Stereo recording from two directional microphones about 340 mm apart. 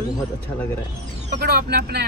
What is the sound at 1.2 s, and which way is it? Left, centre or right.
Speech, right.